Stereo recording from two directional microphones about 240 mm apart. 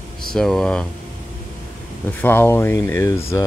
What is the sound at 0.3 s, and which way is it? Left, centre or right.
Speech, centre.